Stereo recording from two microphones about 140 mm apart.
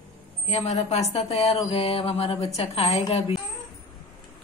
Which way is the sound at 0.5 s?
50° left (ahead or behind).